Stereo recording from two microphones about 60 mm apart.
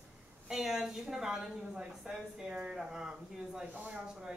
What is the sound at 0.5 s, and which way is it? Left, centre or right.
A woman's voice, centre.